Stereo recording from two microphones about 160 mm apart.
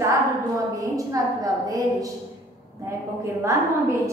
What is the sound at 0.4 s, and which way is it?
A woman's voice, 20° right (ahead or behind).